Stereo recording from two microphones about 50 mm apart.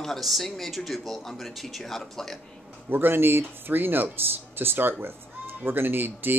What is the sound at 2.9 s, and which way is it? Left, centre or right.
Speech, right.